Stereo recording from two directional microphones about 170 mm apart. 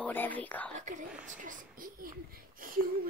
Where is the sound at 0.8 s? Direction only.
45° right (ahead or behind).